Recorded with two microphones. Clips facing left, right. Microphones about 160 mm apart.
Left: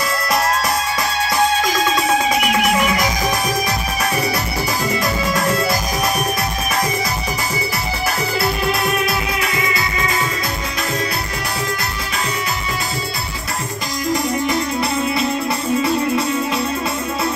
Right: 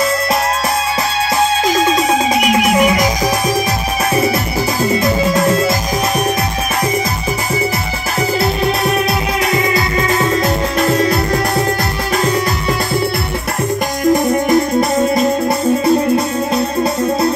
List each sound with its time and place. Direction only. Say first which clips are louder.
10.8 s music: right 9 dB; 45° right (ahead or behind)
14.1 s music: right 6 dB; 50° right (ahead or behind)